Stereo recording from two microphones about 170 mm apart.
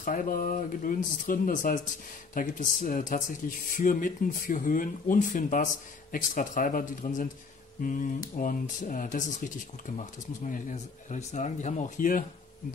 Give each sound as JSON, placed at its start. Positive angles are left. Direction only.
{"t": 0.0, "sound": "speech", "side_deg": 50}
{"t": 10.4, "sound": "speech", "side_deg": 45}